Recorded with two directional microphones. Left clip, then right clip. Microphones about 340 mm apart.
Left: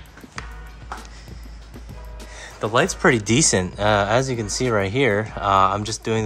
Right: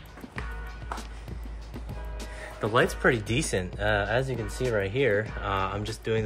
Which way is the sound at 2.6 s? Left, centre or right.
Centre.